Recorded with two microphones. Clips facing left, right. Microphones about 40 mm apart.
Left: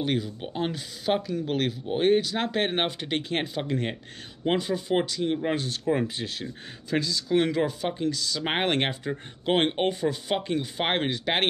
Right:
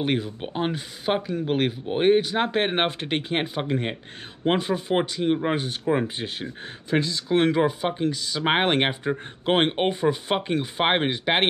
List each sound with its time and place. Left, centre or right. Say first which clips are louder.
0.0 s speech: right 2 dB; right